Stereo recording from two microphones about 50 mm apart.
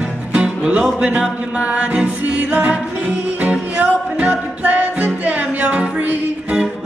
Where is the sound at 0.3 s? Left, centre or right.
Right.